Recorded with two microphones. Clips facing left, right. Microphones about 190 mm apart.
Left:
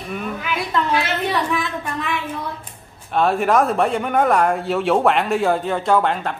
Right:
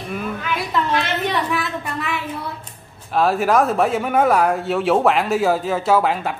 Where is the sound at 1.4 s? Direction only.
5° right (ahead or behind).